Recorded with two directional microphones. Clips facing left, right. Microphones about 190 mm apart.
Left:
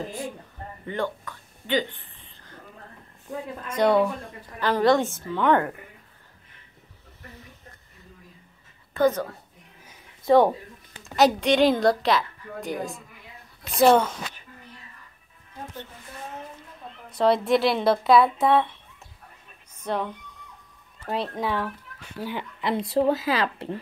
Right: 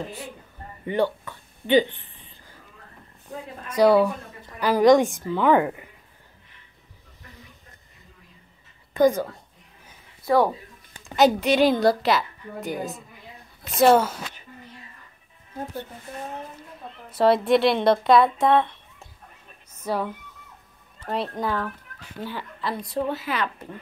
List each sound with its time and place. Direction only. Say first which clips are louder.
0.8 s a sound: right 6 dB; 15° right (ahead or behind)
3.7 s a woman's voice: right 3 dB; 5° right (ahead or behind)
8.9 s a woman's voice: right 3 dB; 10° right (ahead or behind)
10.2 s speech: left 3 dB; 20° left (ahead or behind)
11.0 s a woman's voice: right 1 dB; centre (ahead or behind)
17.1 s a woman's voice: right 2 dB; centre (ahead or behind)
19.8 s a woman's voice: right 1 dB; 5° right (ahead or behind)
22.2 s speech: left 2 dB; 20° left (ahead or behind)